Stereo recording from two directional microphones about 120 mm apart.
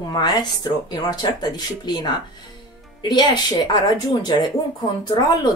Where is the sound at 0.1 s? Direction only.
35° left (ahead or behind).